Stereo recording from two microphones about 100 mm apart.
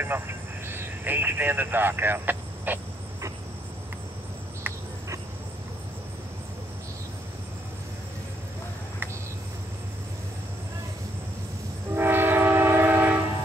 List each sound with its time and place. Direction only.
0.0 s speech: 20° right (ahead or behind)
11.9 s train: 20° right (ahead or behind)